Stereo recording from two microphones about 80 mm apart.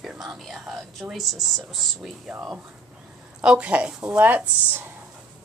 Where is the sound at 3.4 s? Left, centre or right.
Centre.